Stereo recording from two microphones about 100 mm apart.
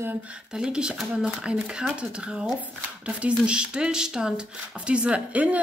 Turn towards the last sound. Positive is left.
turn(degrees=-15)  # may be behind; listen again after turning